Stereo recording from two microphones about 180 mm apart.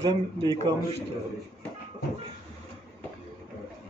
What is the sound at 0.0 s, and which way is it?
Speech, 25° right (ahead or behind).